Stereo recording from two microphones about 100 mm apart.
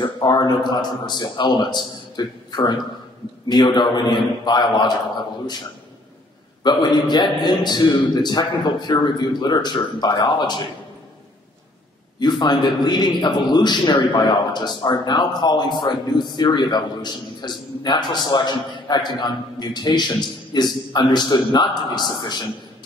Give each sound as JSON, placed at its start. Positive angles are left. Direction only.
{"t": 0.0, "sound": "a man's voice", "side_deg": 50}
{"t": 6.6, "sound": "a man's voice", "side_deg": 45}
{"t": 12.2, "sound": "a man's voice", "side_deg": 45}